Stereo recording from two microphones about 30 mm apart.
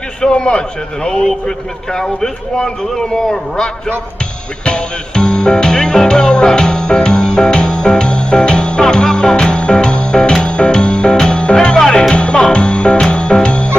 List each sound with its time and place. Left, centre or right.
0.3 s a man's voice: left
4.6 s music: left